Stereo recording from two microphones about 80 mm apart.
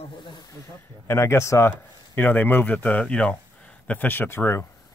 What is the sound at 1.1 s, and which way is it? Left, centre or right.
Speech, left.